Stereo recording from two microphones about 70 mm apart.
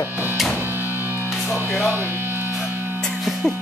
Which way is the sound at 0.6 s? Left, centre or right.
Right.